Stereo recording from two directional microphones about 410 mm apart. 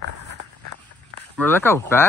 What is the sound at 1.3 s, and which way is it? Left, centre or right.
Speech, centre.